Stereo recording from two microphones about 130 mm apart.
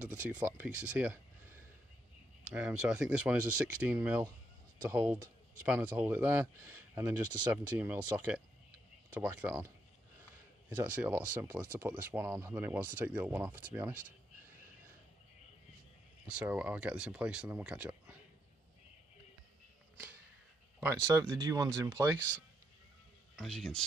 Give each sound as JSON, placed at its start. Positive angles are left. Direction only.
{"t": 0.0, "sound": "speech", "side_deg": -10}
{"t": 10.7, "sound": "speech", "side_deg": -10}
{"t": 16.3, "sound": "speech", "side_deg": -10}
{"t": 20.8, "sound": "speech", "side_deg": -20}
{"t": 23.3, "sound": "speech", "side_deg": 0}